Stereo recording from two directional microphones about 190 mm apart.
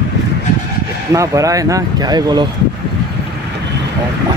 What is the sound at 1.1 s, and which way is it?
Speech, 15° right (ahead or behind).